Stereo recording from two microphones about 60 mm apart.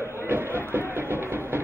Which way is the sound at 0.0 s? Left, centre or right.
Left.